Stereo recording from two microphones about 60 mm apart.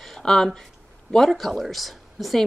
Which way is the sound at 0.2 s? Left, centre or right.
Centre.